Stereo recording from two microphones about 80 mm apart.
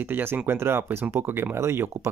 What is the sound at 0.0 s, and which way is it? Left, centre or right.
Speech, right.